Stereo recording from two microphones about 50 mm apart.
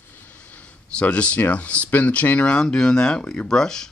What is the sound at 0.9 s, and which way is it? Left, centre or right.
Speech, left.